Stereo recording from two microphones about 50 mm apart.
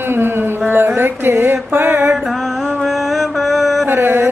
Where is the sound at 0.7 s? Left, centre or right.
Right.